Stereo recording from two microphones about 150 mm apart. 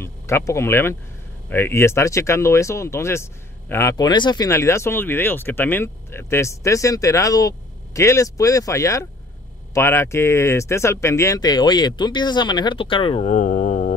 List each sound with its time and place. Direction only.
0.0 s speech: 20° left (ahead or behind); by 13.3 s 35° left (ahead or behind)
13.3 s mantra: 55° left (ahead or behind)